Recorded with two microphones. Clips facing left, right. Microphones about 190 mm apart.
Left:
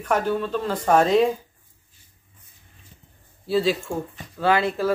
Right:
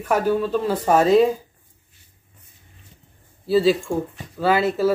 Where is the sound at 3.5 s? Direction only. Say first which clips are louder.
Right 4 dB; centre (ahead or behind).